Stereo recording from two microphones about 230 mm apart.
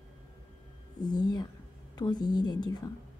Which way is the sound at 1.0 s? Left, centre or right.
Centre.